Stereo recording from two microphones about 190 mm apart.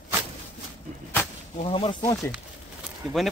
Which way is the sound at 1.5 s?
30° left (ahead or behind).